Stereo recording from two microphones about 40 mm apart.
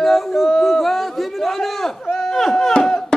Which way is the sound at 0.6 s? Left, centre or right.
Centre.